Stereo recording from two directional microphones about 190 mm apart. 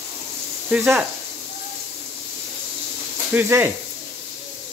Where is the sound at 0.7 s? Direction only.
5° right (ahead or behind).